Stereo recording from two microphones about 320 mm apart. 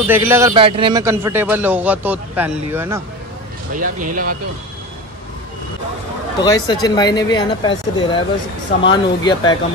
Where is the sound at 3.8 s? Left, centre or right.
Right.